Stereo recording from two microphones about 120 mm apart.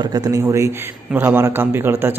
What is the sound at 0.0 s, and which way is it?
A man's voice, 35° right (ahead or behind).